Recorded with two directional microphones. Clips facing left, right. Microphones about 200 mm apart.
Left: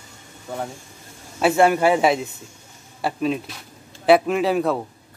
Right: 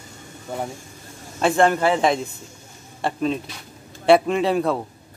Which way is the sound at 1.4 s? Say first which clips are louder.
Left 1 dB; 10° left (ahead or behind).